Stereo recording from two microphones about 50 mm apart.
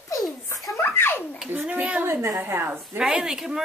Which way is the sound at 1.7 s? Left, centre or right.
Right.